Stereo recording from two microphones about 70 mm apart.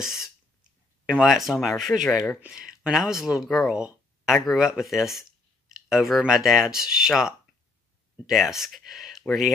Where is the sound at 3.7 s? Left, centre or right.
Centre.